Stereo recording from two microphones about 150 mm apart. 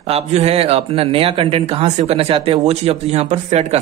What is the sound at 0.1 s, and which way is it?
Speech, 45° right (ahead or behind).